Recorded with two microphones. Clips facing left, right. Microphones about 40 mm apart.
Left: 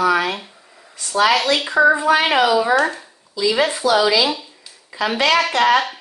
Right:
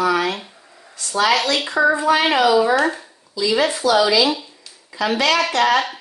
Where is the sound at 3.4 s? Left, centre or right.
Centre.